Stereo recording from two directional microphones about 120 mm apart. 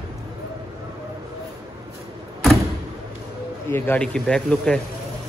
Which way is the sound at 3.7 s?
20° left (ahead or behind).